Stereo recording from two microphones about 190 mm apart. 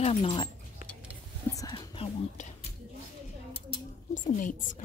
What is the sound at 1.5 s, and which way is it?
Whispering, 20° left (ahead or behind).